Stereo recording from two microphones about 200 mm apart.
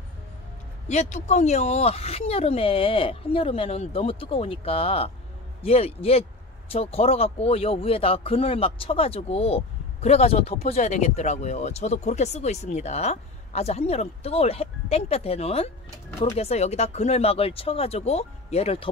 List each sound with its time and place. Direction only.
0.8 s speech: 35° left (ahead or behind)